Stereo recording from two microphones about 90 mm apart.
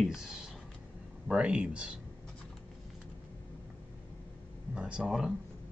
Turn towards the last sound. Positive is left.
turn(degrees=-5)  # may be behind; listen again after turning